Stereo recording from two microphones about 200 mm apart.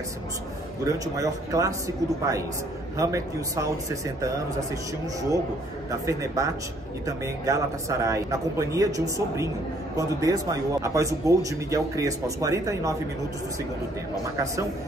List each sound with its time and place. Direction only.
0.8 s a man's voice: 15° right (ahead or behind)
3.0 s a man's voice: 15° right (ahead or behind)
5.9 s a man's voice: 15° right (ahead or behind)